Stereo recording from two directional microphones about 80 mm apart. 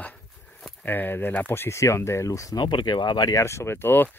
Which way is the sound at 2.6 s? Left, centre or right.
Left.